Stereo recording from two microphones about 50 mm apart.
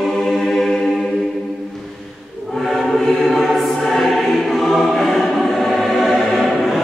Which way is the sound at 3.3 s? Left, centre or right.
Centre.